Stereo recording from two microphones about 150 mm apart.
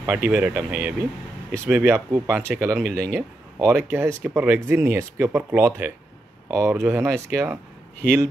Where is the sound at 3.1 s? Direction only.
15° right (ahead or behind).